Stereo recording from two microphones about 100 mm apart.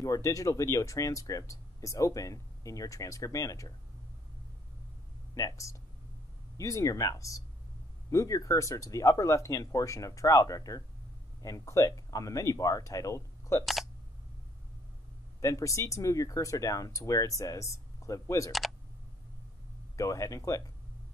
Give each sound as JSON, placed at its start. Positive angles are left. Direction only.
{"t": 0.0, "sound": "speech", "side_deg": 35}
{"t": 5.3, "sound": "speech", "side_deg": 30}
{"t": 15.4, "sound": "speech", "side_deg": 30}
{"t": 20.0, "sound": "speech", "side_deg": 35}